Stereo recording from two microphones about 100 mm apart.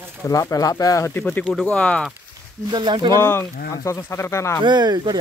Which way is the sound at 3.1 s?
25° left (ahead or behind).